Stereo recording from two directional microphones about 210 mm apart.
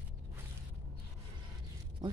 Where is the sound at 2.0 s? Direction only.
20° right (ahead or behind).